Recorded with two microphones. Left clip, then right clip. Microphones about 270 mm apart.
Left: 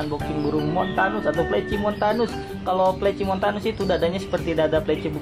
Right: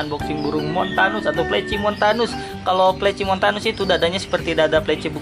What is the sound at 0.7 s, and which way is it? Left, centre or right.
Speech, centre.